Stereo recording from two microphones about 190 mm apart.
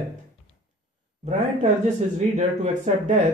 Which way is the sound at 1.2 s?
35° right (ahead or behind).